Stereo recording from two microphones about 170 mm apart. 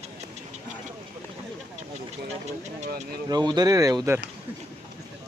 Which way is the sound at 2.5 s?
45° right (ahead or behind).